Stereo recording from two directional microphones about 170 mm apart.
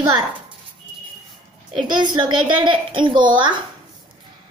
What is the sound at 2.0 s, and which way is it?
A child's voice, 25° right (ahead or behind).